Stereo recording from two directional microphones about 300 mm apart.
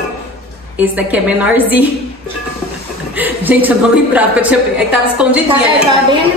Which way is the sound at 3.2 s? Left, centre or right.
Centre.